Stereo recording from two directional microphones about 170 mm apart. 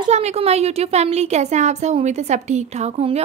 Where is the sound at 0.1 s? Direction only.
40° right (ahead or behind).